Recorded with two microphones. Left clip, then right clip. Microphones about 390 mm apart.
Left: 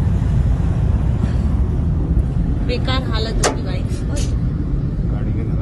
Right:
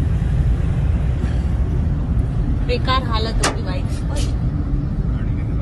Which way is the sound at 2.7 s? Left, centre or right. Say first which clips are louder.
Right 4 dB; centre.